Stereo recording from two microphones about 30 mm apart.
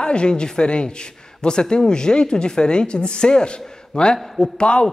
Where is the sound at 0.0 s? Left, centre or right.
Left.